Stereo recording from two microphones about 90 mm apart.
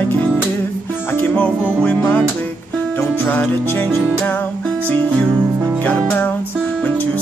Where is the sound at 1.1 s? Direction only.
15° left (ahead or behind).